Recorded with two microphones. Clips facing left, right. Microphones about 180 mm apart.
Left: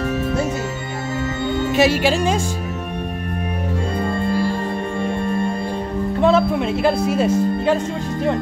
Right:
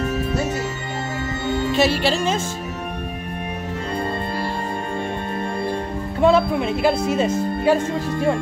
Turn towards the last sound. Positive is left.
turn(degrees=5)  # may be behind; listen again after turning